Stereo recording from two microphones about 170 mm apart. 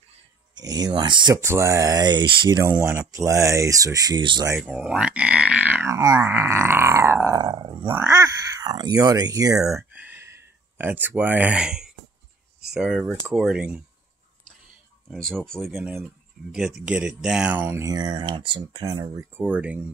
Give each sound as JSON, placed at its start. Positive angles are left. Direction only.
{"t": 0.6, "sound": "speech", "side_deg": -25}
{"t": 1.4, "sound": "speech", "side_deg": -15}
{"t": 4.6, "sound": "speech", "side_deg": -5}
{"t": 9.7, "sound": "a sound", "side_deg": 0}
{"t": 10.8, "sound": "speech", "side_deg": -10}
{"t": 15.0, "sound": "speech", "side_deg": 5}
{"t": 19.3, "sound": "speech", "side_deg": -10}